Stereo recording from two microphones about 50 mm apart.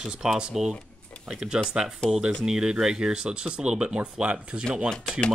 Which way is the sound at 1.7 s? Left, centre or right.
Centre.